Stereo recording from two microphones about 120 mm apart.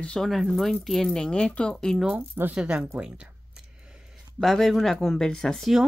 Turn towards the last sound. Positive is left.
turn(degrees=0)  # may be behind; listen again after turning